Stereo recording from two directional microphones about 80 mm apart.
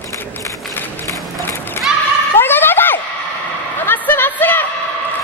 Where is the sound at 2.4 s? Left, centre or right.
Left.